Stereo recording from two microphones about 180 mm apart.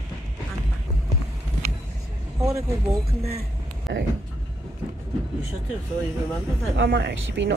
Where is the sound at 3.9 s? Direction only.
75° right (ahead or behind).